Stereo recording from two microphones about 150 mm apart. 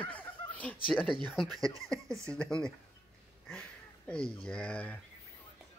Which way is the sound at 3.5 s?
5° left (ahead or behind).